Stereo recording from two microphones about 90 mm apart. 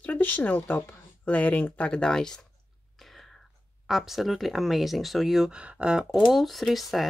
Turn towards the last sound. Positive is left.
turn(degrees=0)  # may be behind; listen again after turning